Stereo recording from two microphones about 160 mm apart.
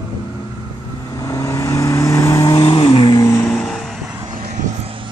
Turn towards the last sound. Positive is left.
turn(degrees=0)  # may be behind; listen again after turning